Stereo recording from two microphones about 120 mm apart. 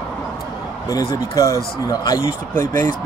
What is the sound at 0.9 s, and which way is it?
Speech, 30° left (ahead or behind).